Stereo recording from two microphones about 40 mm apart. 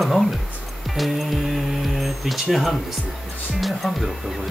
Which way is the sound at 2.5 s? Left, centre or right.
Centre.